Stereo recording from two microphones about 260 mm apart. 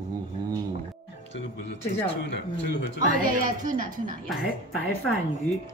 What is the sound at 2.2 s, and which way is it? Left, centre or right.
Speech, left.